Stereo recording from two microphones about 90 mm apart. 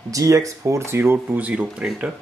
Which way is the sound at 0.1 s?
40° right (ahead or behind).